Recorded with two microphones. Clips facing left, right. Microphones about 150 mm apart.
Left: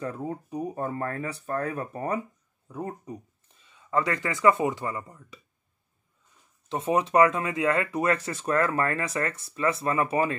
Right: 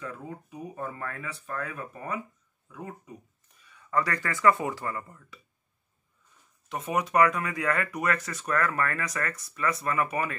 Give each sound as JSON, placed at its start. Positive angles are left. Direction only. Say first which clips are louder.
{"t": 0.0, "sound": "speech", "louder": "left 6 dB", "side_deg": 35}
{"t": 3.5, "sound": "speech", "louder": "left 1 dB", "side_deg": 20}
{"t": 6.7, "sound": "speech", "louder": "left 4 dB", "side_deg": 30}